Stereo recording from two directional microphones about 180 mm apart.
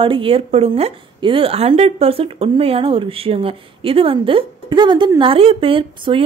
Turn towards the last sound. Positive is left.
turn(degrees=-30)  # may be behind; listen again after turning